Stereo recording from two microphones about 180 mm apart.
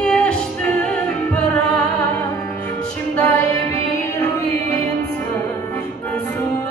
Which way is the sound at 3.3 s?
20° left (ahead or behind).